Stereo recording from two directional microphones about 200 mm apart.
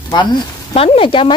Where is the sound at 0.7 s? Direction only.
30° left (ahead or behind).